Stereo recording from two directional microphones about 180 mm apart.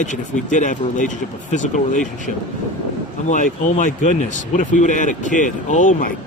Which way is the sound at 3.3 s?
45° left (ahead or behind).